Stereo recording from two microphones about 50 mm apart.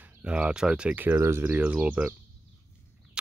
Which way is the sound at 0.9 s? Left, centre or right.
Right.